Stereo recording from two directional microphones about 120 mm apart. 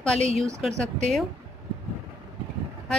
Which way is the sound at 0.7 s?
75° right (ahead or behind).